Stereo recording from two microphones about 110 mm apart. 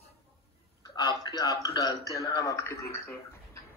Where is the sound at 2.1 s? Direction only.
30° left (ahead or behind).